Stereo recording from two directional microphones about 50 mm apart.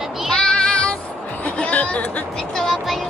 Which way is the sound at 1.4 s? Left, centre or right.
Left.